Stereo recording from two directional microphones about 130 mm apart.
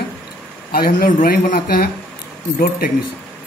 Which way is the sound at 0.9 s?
90° left.